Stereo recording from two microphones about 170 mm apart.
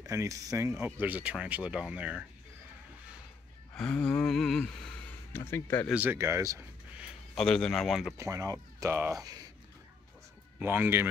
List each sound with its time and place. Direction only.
0.0 s speech: 20° right (ahead or behind)
3.7 s speech: 5° left (ahead or behind)
5.9 s speech: 10° right (ahead or behind)
7.0 s speech: centre (ahead or behind)
8.2 s speech: 20° right (ahead or behind)
10.6 s speech: 10° right (ahead or behind)